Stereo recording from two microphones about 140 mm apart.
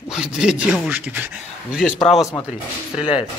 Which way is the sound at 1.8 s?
5° left (ahead or behind).